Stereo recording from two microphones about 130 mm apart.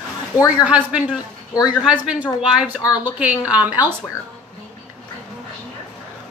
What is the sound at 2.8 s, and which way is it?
Speech, 30° left (ahead or behind).